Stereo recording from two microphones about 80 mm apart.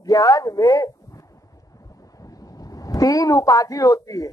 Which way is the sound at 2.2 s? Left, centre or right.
Left.